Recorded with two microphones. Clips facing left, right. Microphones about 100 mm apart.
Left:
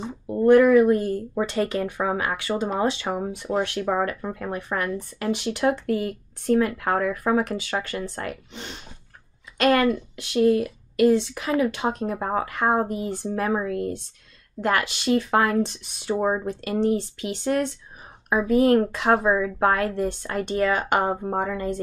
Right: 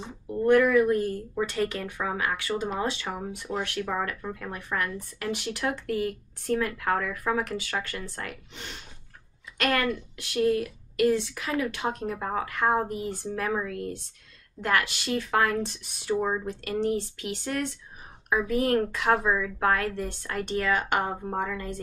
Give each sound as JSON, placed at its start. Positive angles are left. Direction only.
{"t": 0.5, "sound": "speech", "side_deg": 25}